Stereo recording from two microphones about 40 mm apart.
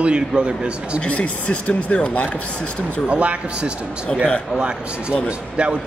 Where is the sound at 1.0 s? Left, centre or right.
Left.